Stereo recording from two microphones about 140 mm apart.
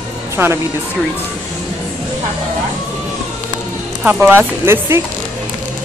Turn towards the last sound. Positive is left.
turn(degrees=-15)  # may be behind; listen again after turning